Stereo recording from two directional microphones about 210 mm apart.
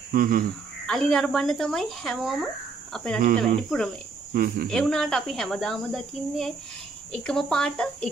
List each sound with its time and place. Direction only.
0.1 s speech: 40° right (ahead or behind)
0.8 s speech: centre (ahead or behind)
4.3 s speech: 45° right (ahead or behind)
4.6 s speech: centre (ahead or behind)